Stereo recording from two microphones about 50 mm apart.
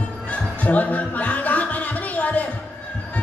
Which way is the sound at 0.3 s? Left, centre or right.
Left.